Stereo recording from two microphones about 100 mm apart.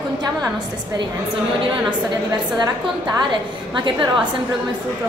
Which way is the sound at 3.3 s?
50° right (ahead or behind).